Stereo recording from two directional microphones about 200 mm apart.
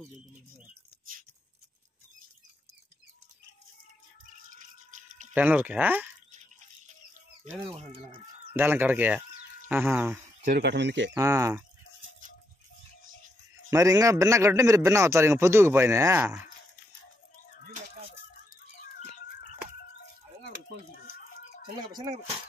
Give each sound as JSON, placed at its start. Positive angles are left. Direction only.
{"t": 4.5, "sound": "rattle", "side_deg": -40}
{"t": 5.3, "sound": "a man's voice", "side_deg": -10}
{"t": 7.6, "sound": "speech", "side_deg": -25}
{"t": 8.5, "sound": "a man's voice", "side_deg": -10}
{"t": 10.4, "sound": "speech", "side_deg": -50}
{"t": 11.1, "sound": "a man's voice", "side_deg": -15}
{"t": 13.7, "sound": "a man's voice", "side_deg": -15}